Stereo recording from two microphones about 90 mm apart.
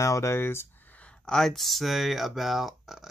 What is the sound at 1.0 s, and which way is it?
Speech, 5° left (ahead or behind).